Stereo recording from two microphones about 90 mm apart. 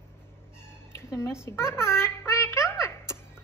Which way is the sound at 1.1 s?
30° left (ahead or behind).